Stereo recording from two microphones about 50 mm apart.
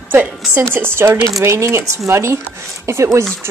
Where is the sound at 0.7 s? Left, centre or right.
Right.